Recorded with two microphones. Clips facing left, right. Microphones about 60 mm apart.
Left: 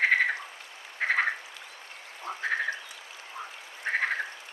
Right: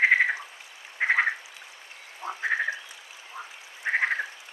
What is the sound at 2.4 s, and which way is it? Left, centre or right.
Frog, centre.